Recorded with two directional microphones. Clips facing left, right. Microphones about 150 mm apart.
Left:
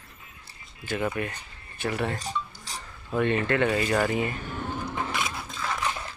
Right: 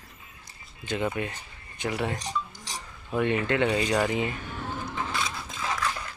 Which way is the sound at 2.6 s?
15° right (ahead or behind).